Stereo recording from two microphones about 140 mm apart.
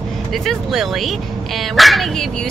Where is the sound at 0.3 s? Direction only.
Centre (ahead or behind).